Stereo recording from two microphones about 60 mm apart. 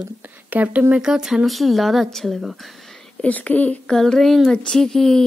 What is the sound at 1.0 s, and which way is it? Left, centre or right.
A woman's voice, centre.